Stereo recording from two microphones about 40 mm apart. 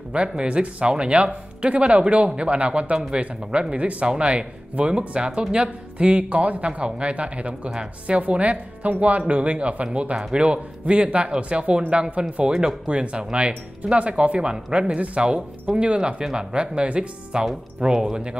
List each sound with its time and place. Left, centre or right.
0.4 s speech: right
8.2 s speech: right